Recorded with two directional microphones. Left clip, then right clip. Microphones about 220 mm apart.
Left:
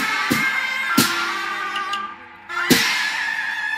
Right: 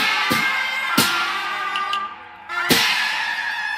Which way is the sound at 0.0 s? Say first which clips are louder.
Right 1 dB; 25° right (ahead or behind).